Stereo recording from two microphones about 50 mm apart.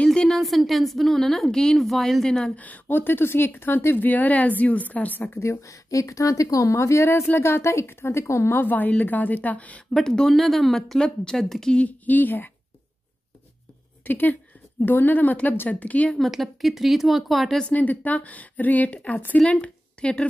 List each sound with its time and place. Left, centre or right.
0.0 s a sound: centre
0.4 s a woman's voice: centre
2.2 s speech: centre
2.5 s speech: left
5.3 s a woman's voice: left
8.7 s speech: left
9.9 s a woman's voice: centre
12.1 s speech: left
14.0 s speech: left
16.3 s a woman's voice: centre
17.6 s speech: left
19.6 s a sound: left